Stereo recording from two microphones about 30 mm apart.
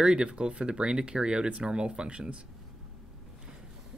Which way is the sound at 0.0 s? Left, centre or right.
Right.